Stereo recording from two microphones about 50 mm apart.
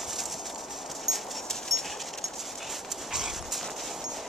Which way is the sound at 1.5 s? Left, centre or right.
Centre.